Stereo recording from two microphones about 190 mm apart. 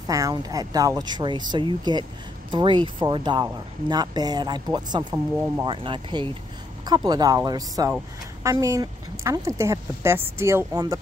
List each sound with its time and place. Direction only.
0.0 s speech: 20° right (ahead or behind)
5.7 s speech: 25° right (ahead or behind)